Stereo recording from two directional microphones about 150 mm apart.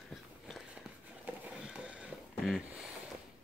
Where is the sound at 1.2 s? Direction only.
5° right (ahead or behind).